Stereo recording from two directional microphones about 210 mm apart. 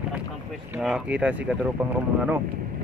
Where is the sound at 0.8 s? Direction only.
5° right (ahead or behind).